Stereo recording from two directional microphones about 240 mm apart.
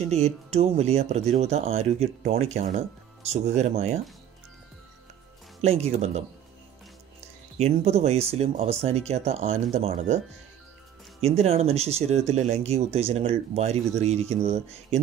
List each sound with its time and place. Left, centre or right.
0.1 s speech: right
5.6 s speech: right
11.1 s speech: right